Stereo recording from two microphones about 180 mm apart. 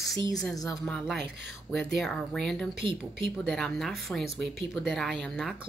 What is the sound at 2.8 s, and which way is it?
Speech, 30° right (ahead or behind).